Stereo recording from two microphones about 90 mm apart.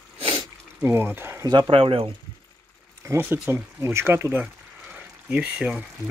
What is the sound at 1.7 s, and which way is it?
Speech, 90° right.